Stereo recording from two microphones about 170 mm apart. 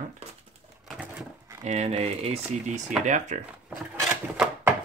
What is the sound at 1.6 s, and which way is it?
Speech, 40° right (ahead or behind).